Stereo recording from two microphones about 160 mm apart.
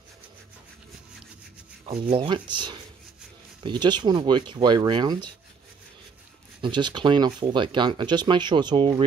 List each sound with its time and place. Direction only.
1.9 s speech: 30° right (ahead or behind)
6.6 s speech: 30° right (ahead or behind)